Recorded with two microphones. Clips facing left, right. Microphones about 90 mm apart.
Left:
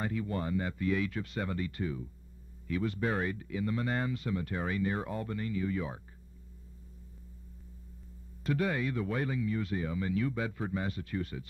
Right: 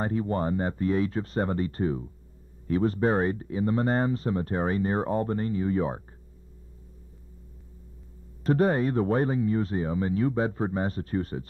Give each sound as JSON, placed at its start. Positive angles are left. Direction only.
{"t": 0.0, "sound": "speech", "side_deg": -35}
{"t": 8.5, "sound": "speech", "side_deg": -40}